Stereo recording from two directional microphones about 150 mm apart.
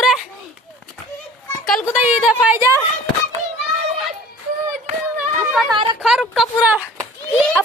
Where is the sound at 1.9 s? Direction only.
10° right (ahead or behind).